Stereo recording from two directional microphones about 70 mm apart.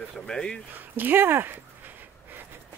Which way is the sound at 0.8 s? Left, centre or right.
Right.